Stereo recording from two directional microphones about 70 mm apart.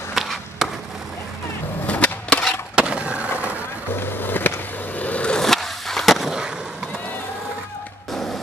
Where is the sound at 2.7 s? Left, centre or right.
Centre.